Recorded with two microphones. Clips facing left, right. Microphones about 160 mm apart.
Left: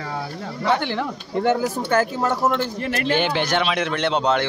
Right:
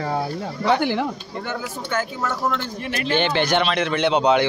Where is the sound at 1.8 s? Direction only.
40° left (ahead or behind).